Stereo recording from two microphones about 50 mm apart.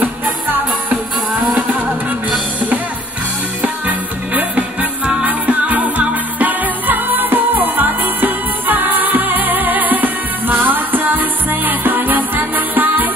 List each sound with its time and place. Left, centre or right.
0.0 s music: right
3.6 s music: right